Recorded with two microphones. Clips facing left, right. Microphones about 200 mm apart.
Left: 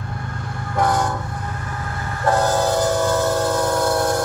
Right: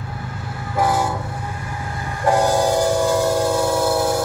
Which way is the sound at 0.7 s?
5° right (ahead or behind).